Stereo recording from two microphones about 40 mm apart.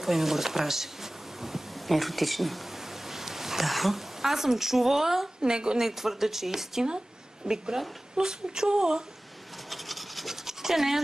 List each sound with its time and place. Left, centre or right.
0.0 s a woman's voice: centre
5.4 s a woman's voice: right
5.8 s speech: centre
9.7 s rub: centre